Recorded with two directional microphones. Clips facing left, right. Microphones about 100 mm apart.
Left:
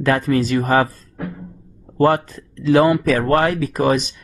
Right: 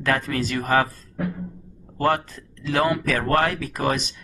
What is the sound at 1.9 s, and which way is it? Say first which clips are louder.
Speech: left 6 dB; 20° left (ahead or behind).